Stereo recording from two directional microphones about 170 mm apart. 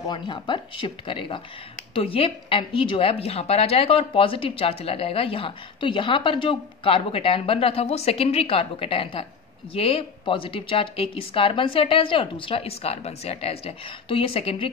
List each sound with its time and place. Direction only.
0.0 s a woman's voice: 25° left (ahead or behind)